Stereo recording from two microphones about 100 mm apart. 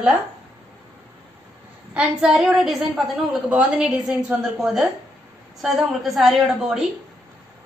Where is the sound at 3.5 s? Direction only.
10° right (ahead or behind).